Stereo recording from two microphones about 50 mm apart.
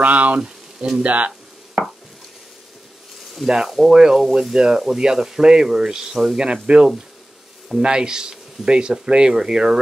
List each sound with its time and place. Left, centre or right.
0.0 s speech: right
0.7 s speech: centre
1.0 s speech: right
1.8 s chopping: right
3.3 s speech: centre